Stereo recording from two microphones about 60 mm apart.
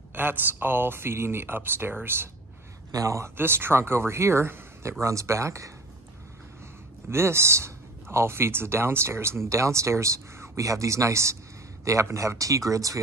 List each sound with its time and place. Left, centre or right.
0.1 s speech: right
2.9 s speech: right
3.3 s speech: right
5.0 s speech: right
7.1 s speech: right